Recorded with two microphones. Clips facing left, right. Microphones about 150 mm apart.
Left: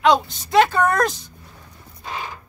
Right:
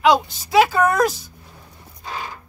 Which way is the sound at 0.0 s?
5° right (ahead or behind).